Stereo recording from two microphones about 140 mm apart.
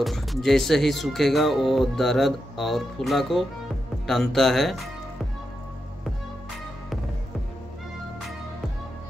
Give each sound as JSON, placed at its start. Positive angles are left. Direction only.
{"t": 0.0, "sound": "speech", "side_deg": 0}